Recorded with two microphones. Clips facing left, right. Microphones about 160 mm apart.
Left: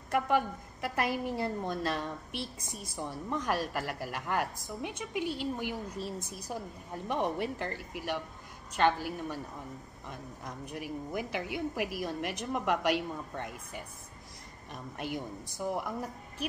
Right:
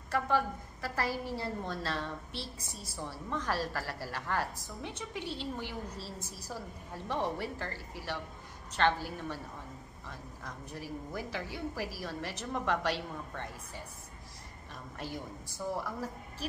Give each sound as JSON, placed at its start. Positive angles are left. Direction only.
{"t": 0.1, "sound": "a woman's voice", "side_deg": 20}
{"t": 14.7, "sound": "a woman's voice", "side_deg": 15}